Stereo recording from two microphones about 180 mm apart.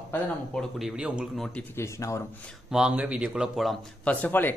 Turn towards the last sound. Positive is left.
turn(degrees=10)  # may be behind; listen again after turning